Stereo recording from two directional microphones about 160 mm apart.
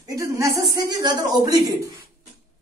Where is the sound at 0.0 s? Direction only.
20° right (ahead or behind).